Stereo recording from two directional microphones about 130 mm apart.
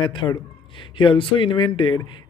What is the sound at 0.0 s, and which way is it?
Speech, 35° left (ahead or behind).